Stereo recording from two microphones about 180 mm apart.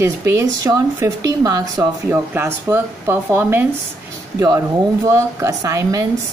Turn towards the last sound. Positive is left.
turn(degrees=-20)  # may be behind; listen again after turning